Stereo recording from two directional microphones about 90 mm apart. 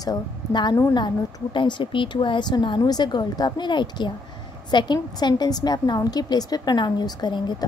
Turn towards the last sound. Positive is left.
turn(degrees=55)  # may be behind; listen again after turning